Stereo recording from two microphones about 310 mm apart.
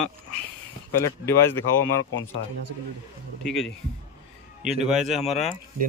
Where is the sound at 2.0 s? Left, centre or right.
Left.